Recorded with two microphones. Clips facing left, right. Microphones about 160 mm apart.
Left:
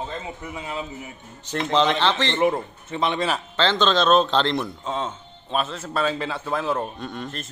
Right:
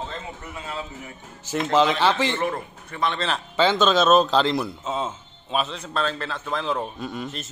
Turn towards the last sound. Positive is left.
turn(degrees=-5)  # may be behind; listen again after turning